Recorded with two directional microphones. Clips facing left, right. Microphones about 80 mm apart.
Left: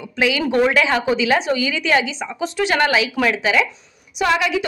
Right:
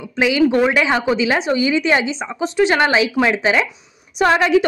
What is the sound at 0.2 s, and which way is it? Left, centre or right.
A woman's voice, right.